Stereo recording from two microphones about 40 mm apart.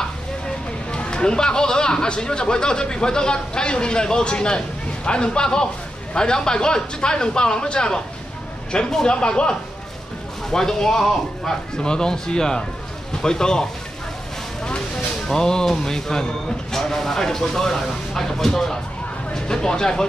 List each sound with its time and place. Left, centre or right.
0.9 s speech: left
15.2 s speech: centre